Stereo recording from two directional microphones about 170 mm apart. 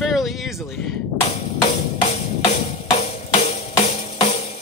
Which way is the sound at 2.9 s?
35° left (ahead or behind).